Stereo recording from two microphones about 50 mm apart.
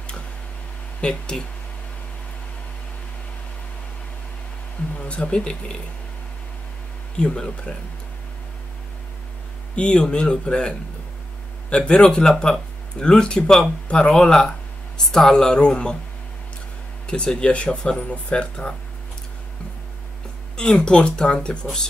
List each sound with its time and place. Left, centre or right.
1.0 s speech: left
4.9 s speech: left
7.2 s speech: centre
9.8 s speech: centre
11.7 s speech: left
17.0 s speech: centre
20.5 s speech: centre